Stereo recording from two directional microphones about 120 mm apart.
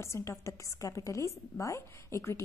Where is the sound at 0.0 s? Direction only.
25° left (ahead or behind).